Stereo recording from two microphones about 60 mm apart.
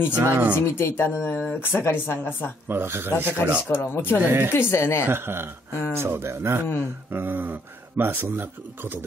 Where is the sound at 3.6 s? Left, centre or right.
Left.